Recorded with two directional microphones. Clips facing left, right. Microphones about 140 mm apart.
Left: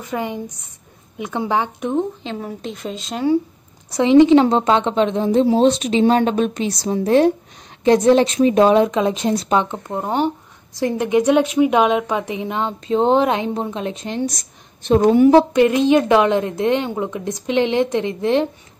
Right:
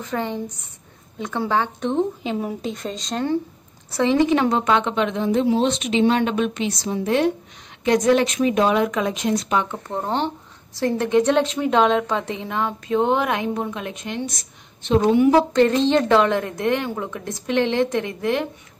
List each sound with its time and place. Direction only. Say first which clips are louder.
0.0 s speech: left 1 dB; 10° left (ahead or behind)
2.2 s speech: right 2 dB; 10° right (ahead or behind)
2.7 s speech: even; 5° left (ahead or behind)
3.9 s a woman's voice: left 7 dB; 20° left (ahead or behind)
9.8 s a woman's voice: left 4 dB; 10° left (ahead or behind); by 15.2 s 45° left (ahead or behind)
15.5 s a woman's voice: left 3 dB; 10° left (ahead or behind)